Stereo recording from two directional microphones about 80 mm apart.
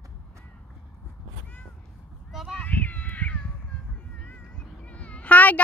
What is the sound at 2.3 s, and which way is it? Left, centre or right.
Children playing, centre.